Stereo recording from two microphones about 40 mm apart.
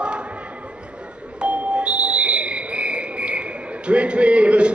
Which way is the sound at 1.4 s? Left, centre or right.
Right.